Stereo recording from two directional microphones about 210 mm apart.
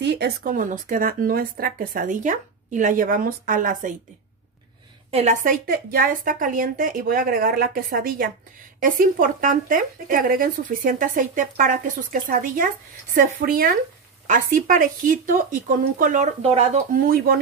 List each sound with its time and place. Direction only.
0.0 s speech: 50° right (ahead or behind)
5.1 s speech: 35° right (ahead or behind)